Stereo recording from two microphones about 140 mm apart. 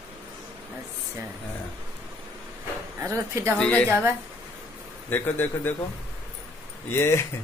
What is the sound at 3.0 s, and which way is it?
Speech, 20° right (ahead or behind).